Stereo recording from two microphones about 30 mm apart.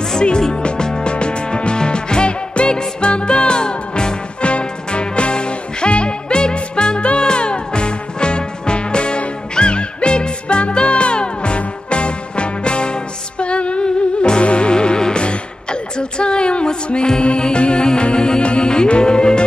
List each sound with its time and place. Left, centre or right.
0.6 s music: left
4.4 s music: left